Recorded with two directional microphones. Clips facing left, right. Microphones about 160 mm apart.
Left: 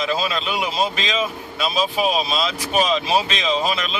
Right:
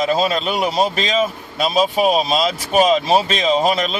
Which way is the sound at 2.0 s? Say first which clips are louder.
Right 5 dB; 40° right (ahead or behind).